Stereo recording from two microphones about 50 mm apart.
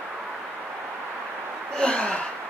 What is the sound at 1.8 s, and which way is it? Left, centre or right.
Gasp, centre.